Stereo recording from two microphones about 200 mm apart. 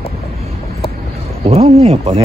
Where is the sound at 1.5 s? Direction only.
30° right (ahead or behind).